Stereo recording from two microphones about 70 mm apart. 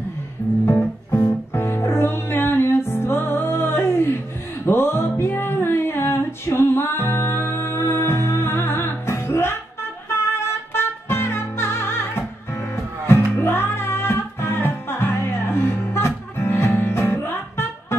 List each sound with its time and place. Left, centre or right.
1.1 s music: left